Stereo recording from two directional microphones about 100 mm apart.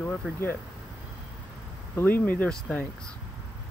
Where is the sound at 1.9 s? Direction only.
20° left (ahead or behind).